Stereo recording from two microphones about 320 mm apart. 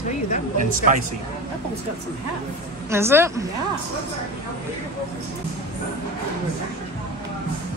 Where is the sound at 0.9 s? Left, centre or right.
Right.